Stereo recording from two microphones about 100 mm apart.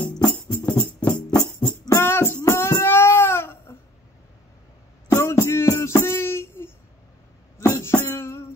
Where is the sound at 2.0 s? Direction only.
25° left (ahead or behind).